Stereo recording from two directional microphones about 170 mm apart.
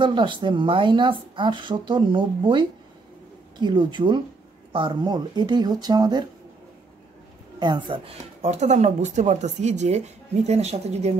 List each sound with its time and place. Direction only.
0.0 s speech: 30° right (ahead or behind)
7.5 s speech: 25° right (ahead or behind)